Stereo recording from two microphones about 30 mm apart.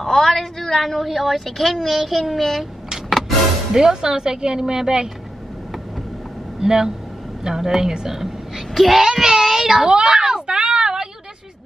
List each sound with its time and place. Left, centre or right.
0.0 s a sound: centre
0.4 s a woman's voice: centre
1.4 s a woman's voice: centre
3.1 s music: centre
3.7 s a woman's voice: centre
6.6 s a woman's voice: centre
8.1 s a sound: centre
8.9 s cat: centre
9.8 s a child's voice: right
10.1 s a sound: right